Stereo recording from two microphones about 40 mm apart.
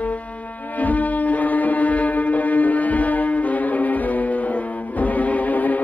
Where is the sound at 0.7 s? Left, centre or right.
Left.